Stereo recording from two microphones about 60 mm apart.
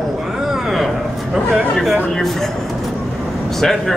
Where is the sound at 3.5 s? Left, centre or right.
Centre.